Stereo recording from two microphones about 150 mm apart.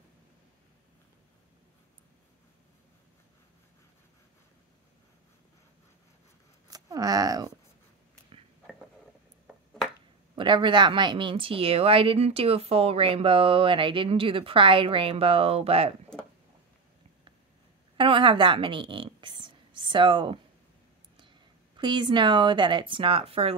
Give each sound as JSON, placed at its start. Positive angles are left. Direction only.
{"t": 6.7, "sound": "speech", "side_deg": -25}
{"t": 10.3, "sound": "a woman's voice", "side_deg": -30}
{"t": 17.9, "sound": "a woman's voice", "side_deg": -35}
{"t": 21.7, "sound": "a woman's voice", "side_deg": -30}